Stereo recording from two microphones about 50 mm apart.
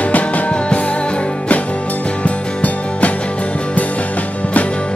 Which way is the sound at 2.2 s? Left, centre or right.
Left.